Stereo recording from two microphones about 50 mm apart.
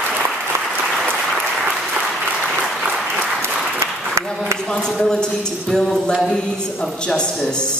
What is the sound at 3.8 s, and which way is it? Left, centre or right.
Applause, right.